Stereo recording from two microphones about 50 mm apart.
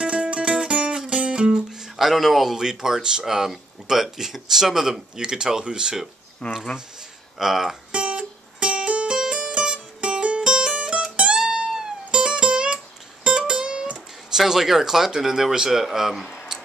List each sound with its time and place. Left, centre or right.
0.0 s music: right
0.6 s speech: centre
6.4 s speech: centre
7.3 s speech: centre
7.9 s music: right
9.2 s music: centre
9.5 s music: right
13.4 s guitar: centre
14.4 s speech: centre